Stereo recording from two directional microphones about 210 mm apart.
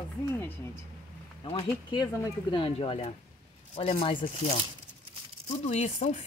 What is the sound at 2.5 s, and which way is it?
Speech, 25° left (ahead or behind).